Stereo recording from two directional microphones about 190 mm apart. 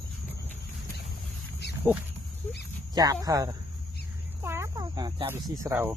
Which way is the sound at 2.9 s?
20° right (ahead or behind).